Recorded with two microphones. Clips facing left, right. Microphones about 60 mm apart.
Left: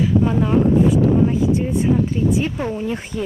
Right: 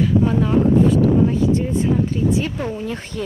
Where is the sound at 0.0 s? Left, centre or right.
Centre.